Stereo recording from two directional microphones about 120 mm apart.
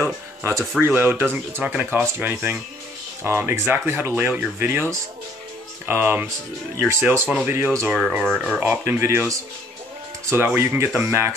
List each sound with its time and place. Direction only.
0.0 s speech: 20° right (ahead or behind)